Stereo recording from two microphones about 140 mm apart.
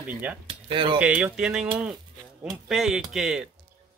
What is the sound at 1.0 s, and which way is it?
Speech, 10° right (ahead or behind).